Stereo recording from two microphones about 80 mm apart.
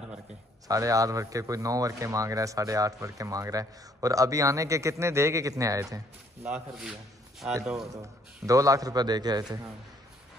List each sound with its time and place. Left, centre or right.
0.7 s a man's voice: right
6.4 s a man's voice: centre
8.0 s a man's voice: right